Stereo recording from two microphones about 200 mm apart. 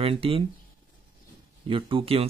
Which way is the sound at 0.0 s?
30° right (ahead or behind).